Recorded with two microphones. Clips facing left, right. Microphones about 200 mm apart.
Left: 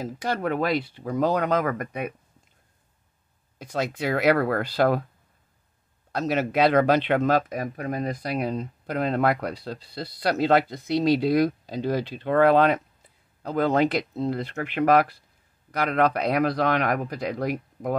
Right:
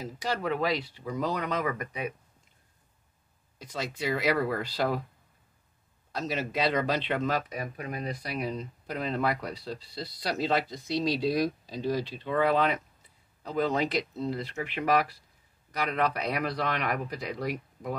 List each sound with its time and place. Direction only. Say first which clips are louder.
0.0 s speech: left 4 dB; 55° left (ahead or behind)
3.5 s speech: left 7 dB; 55° left (ahead or behind)
6.1 s speech: left 8 dB; 60° left (ahead or behind)